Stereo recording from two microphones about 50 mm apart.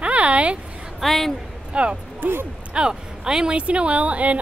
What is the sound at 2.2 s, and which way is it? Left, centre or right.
Speech, right.